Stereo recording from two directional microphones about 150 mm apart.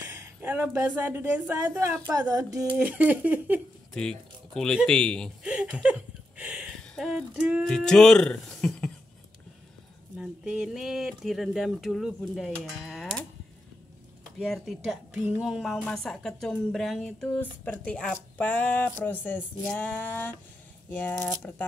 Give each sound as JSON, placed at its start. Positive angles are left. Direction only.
{"t": 0.1, "sound": "a woman's voice", "side_deg": -15}
{"t": 2.8, "sound": "a woman's voice", "side_deg": -10}
{"t": 3.9, "sound": "speech", "side_deg": 5}
{"t": 5.4, "sound": "speech", "side_deg": -5}
{"t": 10.1, "sound": "speech", "side_deg": -5}
{"t": 14.4, "sound": "speech", "side_deg": 0}